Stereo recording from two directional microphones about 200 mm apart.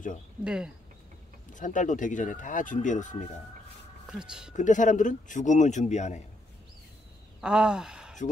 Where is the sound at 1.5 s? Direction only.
40° left (ahead or behind).